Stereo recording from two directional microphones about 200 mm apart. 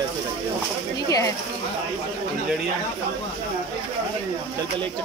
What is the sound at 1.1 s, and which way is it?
Speech, 15° left (ahead or behind).